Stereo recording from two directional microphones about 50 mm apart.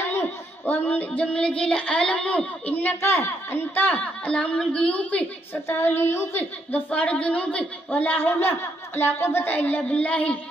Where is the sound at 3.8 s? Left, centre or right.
Left.